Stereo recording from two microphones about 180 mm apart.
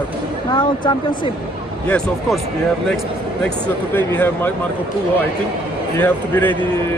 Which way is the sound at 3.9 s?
10° left (ahead or behind).